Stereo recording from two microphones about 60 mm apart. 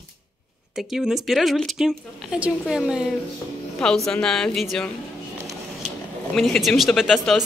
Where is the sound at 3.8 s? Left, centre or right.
Centre.